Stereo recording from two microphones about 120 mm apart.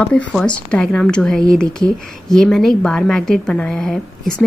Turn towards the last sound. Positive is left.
turn(degrees=0)  # may be behind; listen again after turning